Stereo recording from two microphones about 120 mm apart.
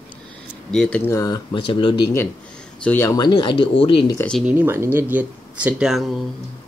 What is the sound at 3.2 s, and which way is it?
Speech, 40° left (ahead or behind).